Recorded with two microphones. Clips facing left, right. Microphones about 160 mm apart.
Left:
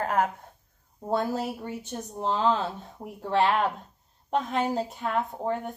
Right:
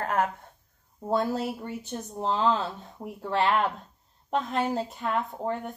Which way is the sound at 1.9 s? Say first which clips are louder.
Even; 45° left (ahead or behind).